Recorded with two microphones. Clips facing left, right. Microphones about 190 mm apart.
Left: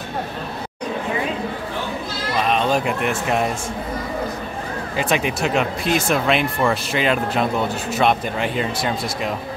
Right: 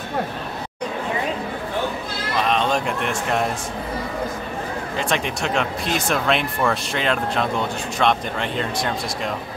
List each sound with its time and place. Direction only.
2.4 s speech: 5° left (ahead or behind)
4.9 s speech: 5° left (ahead or behind)